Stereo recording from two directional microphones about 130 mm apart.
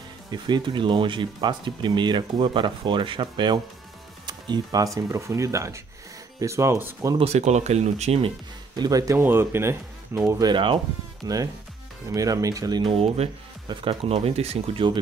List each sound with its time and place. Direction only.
0.3 s speech: 35° right (ahead or behind); by 7.2 s 20° right (ahead or behind)
7.2 s speech: 55° right (ahead or behind)
8.7 s speech: 30° right (ahead or behind)
13.7 s speech: 45° right (ahead or behind)